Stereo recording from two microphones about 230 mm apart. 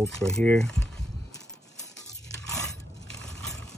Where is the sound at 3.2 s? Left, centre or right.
Centre.